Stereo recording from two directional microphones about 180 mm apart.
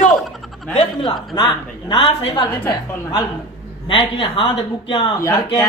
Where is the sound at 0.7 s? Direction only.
25° left (ahead or behind).